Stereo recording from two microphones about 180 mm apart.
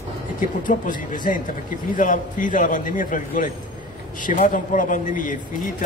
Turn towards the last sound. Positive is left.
turn(degrees=45)  # may be behind; listen again after turning